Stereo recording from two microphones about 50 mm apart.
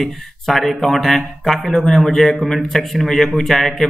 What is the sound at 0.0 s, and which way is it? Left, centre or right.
Speech, centre.